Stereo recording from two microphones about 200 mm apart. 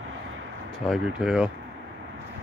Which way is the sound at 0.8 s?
Centre (ahead or behind).